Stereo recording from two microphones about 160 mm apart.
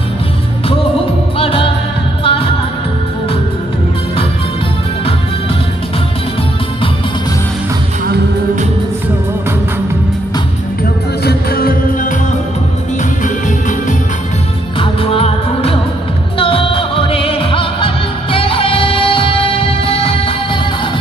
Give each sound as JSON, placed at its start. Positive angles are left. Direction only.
{"t": 1.4, "sound": "music", "side_deg": 35}
{"t": 11.2, "sound": "music", "side_deg": 70}
{"t": 13.2, "sound": "music", "side_deg": 55}
{"t": 14.8, "sound": "music", "side_deg": 40}